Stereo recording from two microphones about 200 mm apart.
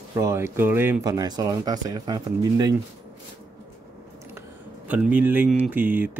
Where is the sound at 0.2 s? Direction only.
15° right (ahead or behind).